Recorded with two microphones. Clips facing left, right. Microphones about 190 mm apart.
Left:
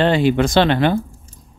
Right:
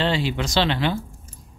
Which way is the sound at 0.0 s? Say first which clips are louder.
Left 8 dB; 50° left (ahead or behind).